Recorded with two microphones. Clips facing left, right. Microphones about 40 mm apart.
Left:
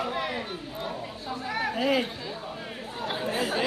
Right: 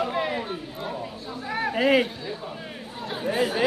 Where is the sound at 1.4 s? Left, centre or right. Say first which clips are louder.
Right 2 dB; centre.